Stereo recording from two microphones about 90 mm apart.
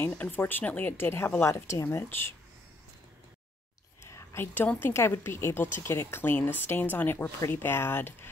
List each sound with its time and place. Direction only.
0.0 s a woman's voice: 20° left (ahead or behind)
4.0 s whispering: 30° left (ahead or behind)
4.6 s a woman's voice: 20° left (ahead or behind)